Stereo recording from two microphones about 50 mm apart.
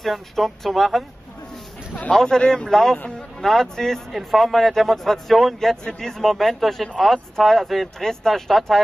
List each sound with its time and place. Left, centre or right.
0.0 s a man's voice: centre
2.1 s a man's voice: centre